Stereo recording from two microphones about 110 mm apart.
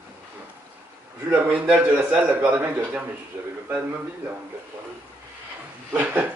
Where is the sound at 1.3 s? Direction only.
15° right (ahead or behind).